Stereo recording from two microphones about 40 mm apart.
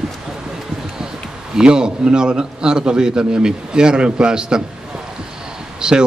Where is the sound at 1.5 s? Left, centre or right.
Centre.